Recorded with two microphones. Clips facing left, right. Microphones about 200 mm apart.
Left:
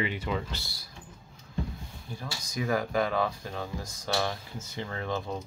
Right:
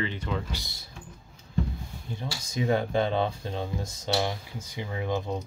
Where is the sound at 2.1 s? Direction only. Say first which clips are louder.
Right 3 dB; 25° right (ahead or behind).